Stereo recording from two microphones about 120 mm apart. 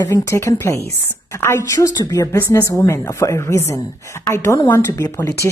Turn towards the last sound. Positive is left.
turn(degrees=25)  # may be behind; listen again after turning